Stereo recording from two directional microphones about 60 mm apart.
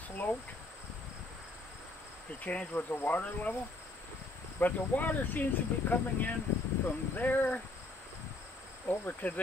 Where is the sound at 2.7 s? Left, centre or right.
Left.